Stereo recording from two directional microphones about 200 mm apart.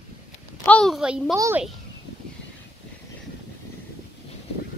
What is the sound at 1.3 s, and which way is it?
Speech, 15° right (ahead or behind).